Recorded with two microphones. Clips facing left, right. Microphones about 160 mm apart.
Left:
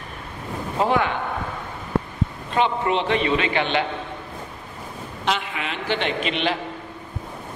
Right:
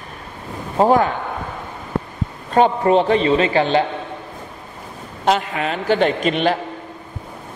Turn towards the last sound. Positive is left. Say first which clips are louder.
# right 6 dB
turn(degrees=-45)  # may be behind; listen again after turning